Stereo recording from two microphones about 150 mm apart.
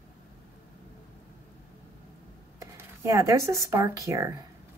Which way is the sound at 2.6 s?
20° right (ahead or behind).